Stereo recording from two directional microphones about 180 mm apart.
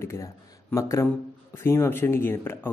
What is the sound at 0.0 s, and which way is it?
Speech, 15° left (ahead or behind).